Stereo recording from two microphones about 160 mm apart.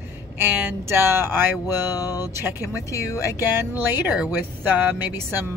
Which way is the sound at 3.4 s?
15° right (ahead or behind).